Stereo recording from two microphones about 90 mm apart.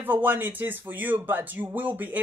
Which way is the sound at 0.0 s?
20° right (ahead or behind).